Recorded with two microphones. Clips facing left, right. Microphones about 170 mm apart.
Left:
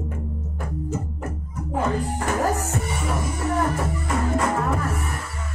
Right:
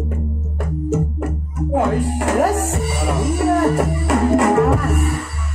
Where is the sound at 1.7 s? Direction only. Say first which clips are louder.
Right 6 dB; 85° right.